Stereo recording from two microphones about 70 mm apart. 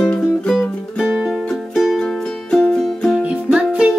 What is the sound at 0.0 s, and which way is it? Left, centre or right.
Music, centre.